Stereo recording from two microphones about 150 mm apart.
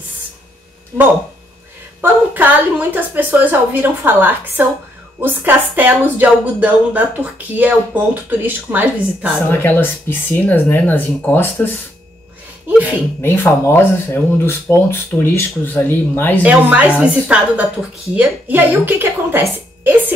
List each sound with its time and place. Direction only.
2.0 s a woman's voice: 10° right (ahead or behind)
9.5 s speech: 15° left (ahead or behind)
12.6 s speech: 10° right (ahead or behind)
13.2 s speech: 15° left (ahead or behind)
16.4 s a woman's voice: 10° right (ahead or behind)